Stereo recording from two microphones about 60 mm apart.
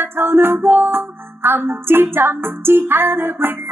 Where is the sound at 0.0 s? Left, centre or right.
Right.